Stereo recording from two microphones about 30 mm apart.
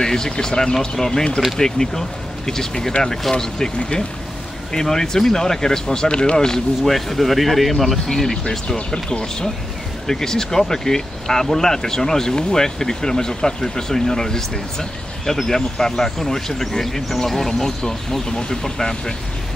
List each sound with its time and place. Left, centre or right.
0.0 s speech: centre
6.0 s speech: left
6.3 s speech: centre
6.8 s speech: centre
8.5 s speech: left